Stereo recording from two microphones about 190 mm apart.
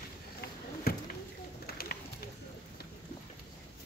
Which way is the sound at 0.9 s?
55° left (ahead or behind).